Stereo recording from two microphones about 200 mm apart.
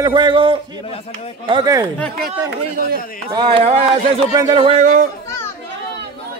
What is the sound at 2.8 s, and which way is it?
Speech, 45° right (ahead or behind).